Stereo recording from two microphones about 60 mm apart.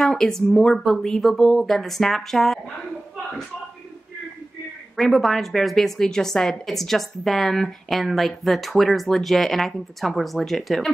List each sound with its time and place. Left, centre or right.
0.0 s speech: centre
1.7 s a woman's voice: centre
4.9 s a woman's voice: centre